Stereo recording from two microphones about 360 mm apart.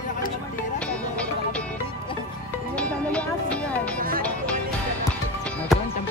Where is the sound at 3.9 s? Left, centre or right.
Right.